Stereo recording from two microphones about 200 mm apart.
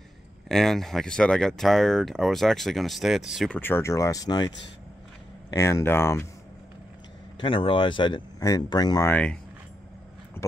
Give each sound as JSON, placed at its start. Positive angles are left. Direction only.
{"t": 0.5, "sound": "speech", "side_deg": 0}
{"t": 5.5, "sound": "speech", "side_deg": 15}
{"t": 7.3, "sound": "speech", "side_deg": 25}